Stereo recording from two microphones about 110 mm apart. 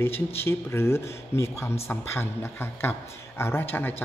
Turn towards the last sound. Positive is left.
turn(degrees=20)  # may be behind; listen again after turning